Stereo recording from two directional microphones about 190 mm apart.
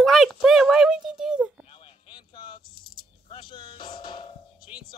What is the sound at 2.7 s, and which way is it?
Rattle, 50° left (ahead or behind).